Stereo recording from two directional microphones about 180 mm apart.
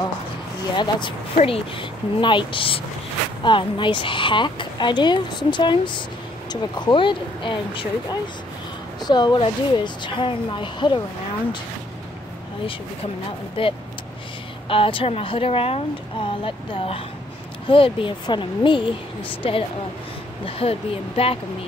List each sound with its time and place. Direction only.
0.7 s speech: 25° left (ahead or behind)
13.6 s speech: 30° left (ahead or behind)